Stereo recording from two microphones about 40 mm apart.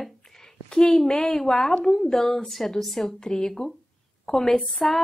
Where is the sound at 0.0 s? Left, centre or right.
Centre.